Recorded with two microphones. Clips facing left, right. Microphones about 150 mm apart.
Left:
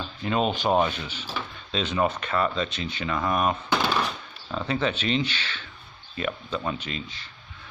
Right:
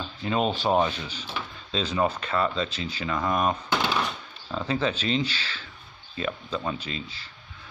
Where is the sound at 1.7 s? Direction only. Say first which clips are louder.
Even; 35° right (ahead or behind).